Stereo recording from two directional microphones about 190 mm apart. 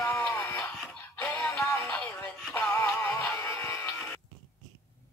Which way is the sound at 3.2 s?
15° left (ahead or behind).